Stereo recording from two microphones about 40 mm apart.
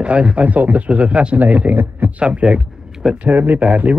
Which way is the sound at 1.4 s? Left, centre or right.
Right.